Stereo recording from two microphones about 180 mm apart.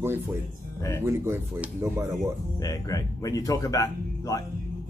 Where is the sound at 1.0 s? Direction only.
15° right (ahead or behind).